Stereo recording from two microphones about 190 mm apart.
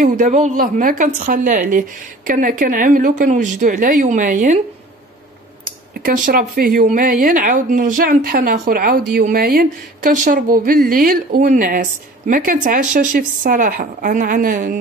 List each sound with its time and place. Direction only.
0.0 s a woman's voice: 40° right (ahead or behind)
6.0 s a woman's voice: 45° right (ahead or behind)